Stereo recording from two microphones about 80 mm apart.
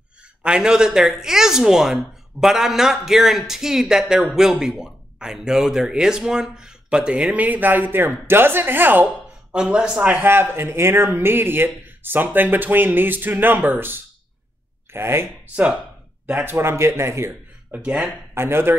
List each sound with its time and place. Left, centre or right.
0.4 s speech: centre
9.5 s speech: centre
10.0 s speech: right
15.5 s speech: centre
16.4 s a man's voice: right
17.6 s speech: centre
18.3 s a man's voice: right